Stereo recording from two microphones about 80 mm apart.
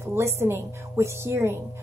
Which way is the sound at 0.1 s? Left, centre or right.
Right.